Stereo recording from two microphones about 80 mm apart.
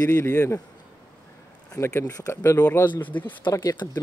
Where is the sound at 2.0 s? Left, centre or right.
Left.